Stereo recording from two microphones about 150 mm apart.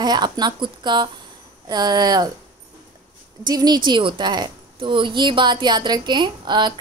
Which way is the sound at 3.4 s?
25° right (ahead or behind).